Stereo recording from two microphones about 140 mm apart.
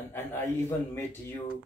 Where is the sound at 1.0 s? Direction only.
15° left (ahead or behind).